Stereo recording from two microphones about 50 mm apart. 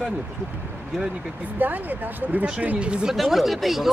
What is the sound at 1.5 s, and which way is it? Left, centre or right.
Speech, right.